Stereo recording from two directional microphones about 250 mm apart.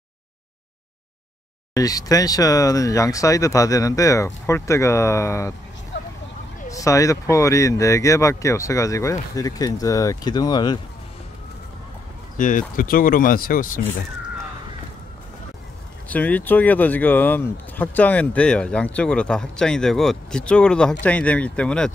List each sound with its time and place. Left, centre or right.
1.7 s speech: centre
6.7 s speech: centre
12.4 s speech: left
16.1 s speech: centre